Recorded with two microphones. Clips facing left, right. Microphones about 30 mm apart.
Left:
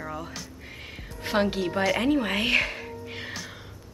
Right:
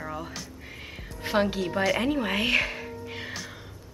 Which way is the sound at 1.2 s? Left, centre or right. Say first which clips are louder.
Even; centre.